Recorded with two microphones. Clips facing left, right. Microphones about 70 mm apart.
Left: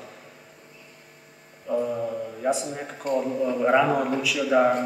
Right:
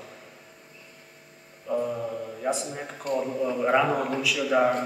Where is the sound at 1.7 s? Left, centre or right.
Centre.